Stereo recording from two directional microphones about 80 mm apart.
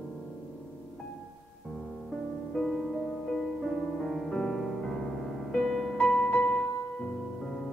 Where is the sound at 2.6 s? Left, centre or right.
Centre.